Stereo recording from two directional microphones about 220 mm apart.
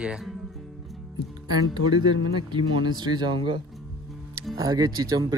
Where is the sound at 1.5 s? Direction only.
20° right (ahead or behind).